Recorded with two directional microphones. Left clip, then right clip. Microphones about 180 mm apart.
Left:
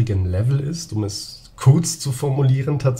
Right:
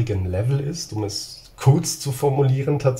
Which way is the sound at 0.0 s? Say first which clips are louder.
Right 1 dB; 15° left (ahead or behind).